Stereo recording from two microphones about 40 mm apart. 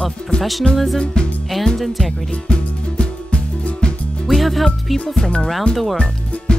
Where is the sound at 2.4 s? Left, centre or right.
Left.